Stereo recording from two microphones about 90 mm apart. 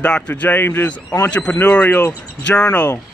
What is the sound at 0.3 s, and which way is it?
Speech, 20° left (ahead or behind).